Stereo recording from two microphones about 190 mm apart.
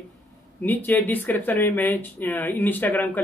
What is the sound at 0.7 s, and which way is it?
Speech, 10° left (ahead or behind).